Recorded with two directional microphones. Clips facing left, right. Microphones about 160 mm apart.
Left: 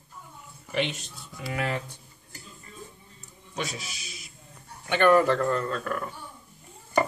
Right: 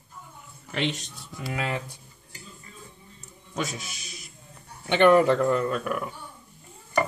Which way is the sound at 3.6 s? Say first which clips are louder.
Right 2 dB; 50° right (ahead or behind).